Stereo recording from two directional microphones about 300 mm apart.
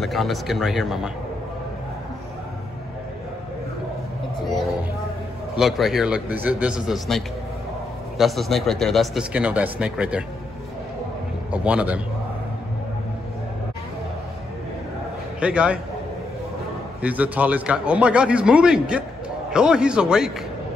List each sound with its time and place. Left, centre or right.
0.0 s a man's voice: centre
5.6 s a man's voice: centre
11.5 s a man's voice: centre
15.4 s a man's voice: centre
17.0 s a man's voice: centre